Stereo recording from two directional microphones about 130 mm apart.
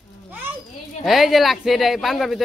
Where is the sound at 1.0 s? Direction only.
Centre (ahead or behind).